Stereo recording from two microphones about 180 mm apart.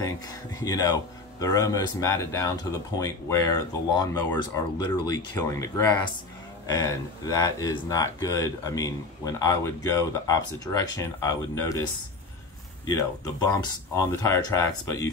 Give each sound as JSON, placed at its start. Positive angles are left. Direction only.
{"t": 0.6, "sound": "speech", "side_deg": 20}
{"t": 12.9, "sound": "speech", "side_deg": 20}